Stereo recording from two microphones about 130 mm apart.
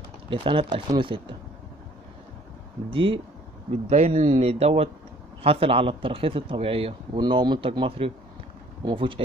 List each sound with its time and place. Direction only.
0.3 s speech: 40° right (ahead or behind)
2.9 s speech: 40° right (ahead or behind)
3.9 s speech: 60° right (ahead or behind)
7.2 s speech: 35° right (ahead or behind)